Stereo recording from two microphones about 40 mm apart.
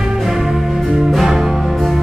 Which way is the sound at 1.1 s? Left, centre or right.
Centre.